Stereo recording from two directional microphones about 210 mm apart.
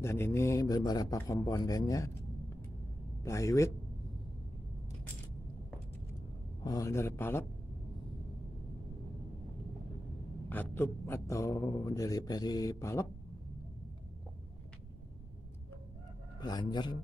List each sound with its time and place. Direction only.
0.0 s speech: 10° left (ahead or behind)
3.3 s speech: 15° left (ahead or behind)
6.6 s speech: 15° left (ahead or behind)
10.5 s speech: 10° left (ahead or behind)
16.3 s a man's voice: 20° left (ahead or behind)